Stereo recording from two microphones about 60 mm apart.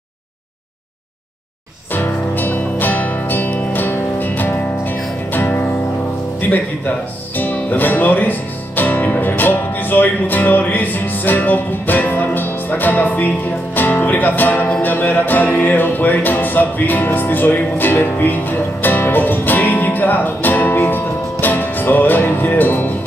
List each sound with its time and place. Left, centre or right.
1.9 s music: left
7.3 s speech: left
14.0 s music: left